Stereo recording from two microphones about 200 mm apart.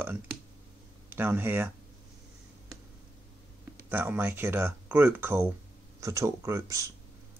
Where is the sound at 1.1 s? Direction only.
10° right (ahead or behind).